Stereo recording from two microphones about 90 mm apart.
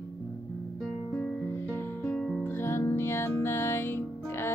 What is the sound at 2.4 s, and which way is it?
Music, 25° left (ahead or behind).